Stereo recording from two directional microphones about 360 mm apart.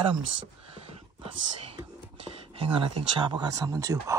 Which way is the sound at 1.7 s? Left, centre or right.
Centre.